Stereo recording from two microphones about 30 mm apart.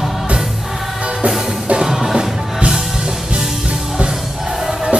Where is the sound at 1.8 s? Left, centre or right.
Centre.